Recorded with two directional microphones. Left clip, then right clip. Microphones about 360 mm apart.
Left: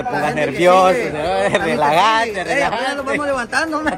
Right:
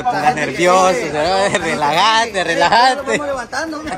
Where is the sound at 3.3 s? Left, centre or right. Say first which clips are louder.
Left 3 dB; left.